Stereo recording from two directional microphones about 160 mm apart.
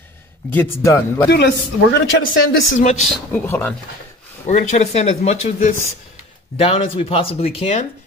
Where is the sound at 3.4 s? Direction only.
15° left (ahead or behind).